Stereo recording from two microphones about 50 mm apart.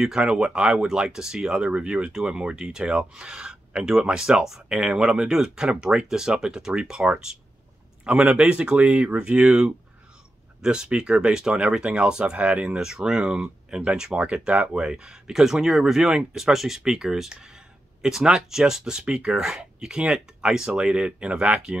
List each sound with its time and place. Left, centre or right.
0.2 s speech: centre
8.0 s a man's voice: right
12.7 s speech: centre